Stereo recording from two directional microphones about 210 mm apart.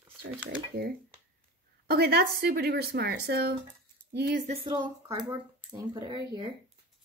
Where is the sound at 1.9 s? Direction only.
50° right (ahead or behind).